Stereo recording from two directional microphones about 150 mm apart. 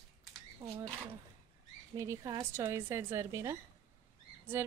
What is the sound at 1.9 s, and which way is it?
Speech, 20° right (ahead or behind).